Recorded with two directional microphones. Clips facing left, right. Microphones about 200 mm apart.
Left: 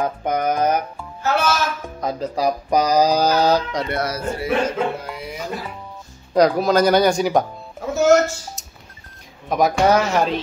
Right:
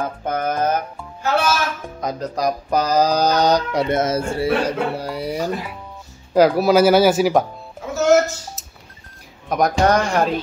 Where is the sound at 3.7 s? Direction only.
20° right (ahead or behind); by 5.4 s 35° right (ahead or behind).